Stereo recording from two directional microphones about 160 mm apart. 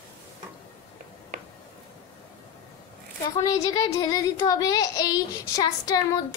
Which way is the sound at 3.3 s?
20° left (ahead or behind).